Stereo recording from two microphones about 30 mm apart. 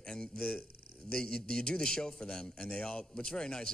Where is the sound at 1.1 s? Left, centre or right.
Left.